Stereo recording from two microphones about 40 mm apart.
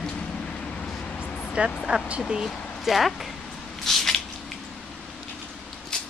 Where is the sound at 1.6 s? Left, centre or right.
Right.